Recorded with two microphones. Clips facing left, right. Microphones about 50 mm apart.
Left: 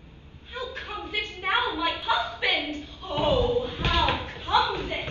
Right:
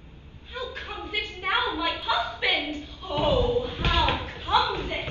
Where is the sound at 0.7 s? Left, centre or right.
Right.